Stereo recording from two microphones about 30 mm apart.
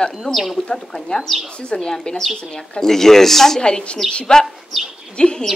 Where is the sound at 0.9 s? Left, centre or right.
Centre.